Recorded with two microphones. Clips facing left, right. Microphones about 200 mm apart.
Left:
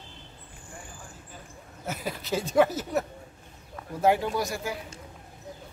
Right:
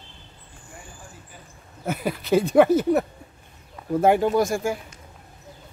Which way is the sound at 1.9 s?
60° right (ahead or behind).